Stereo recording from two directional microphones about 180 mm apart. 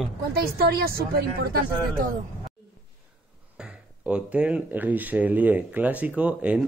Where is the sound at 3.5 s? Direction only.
5° right (ahead or behind).